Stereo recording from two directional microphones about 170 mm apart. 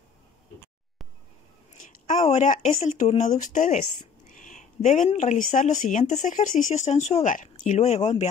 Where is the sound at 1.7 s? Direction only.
45° left (ahead or behind).